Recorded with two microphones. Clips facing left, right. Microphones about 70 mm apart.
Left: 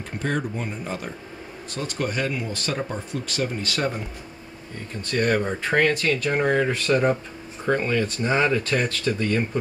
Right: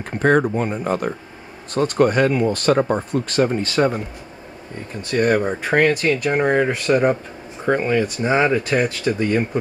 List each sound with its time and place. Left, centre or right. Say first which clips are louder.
0.2 s speech: right 11 dB; right
5.0 s speech: right 5 dB; centre